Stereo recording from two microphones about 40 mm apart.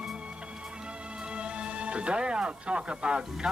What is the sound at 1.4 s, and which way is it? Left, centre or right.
Speech, right.